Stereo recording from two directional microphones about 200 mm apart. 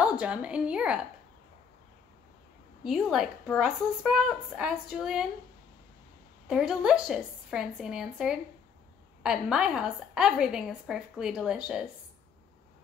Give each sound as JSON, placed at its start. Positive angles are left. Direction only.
{"t": 0.0, "sound": "a woman's voice", "side_deg": -5}
{"t": 2.8, "sound": "a woman's voice", "side_deg": 0}
{"t": 6.4, "sound": "a woman's voice", "side_deg": -5}